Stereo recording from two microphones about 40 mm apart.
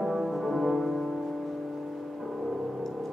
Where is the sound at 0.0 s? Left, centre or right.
Centre.